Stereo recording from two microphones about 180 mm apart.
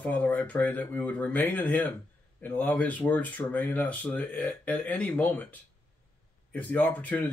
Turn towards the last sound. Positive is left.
turn(degrees=10)  # may be behind; listen again after turning